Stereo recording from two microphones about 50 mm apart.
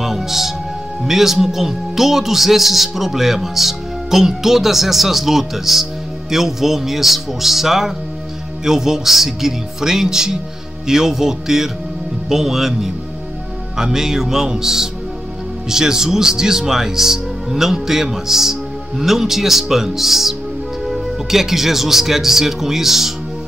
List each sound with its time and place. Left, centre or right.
0.0 s music: centre
1.0 s a man's voice: centre